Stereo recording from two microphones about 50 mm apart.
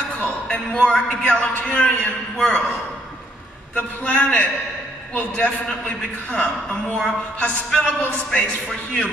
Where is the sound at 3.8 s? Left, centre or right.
Left.